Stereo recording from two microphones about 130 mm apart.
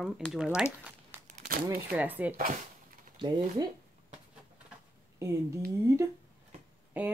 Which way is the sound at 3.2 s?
35° right (ahead or behind).